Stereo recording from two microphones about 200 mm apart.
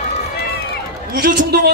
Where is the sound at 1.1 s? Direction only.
50° right (ahead or behind).